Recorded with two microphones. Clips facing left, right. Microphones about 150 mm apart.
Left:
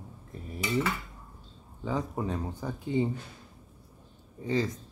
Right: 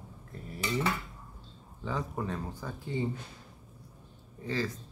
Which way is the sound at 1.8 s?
20° left (ahead or behind).